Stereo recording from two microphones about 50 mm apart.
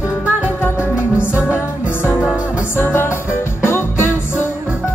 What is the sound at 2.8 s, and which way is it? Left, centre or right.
Music, left.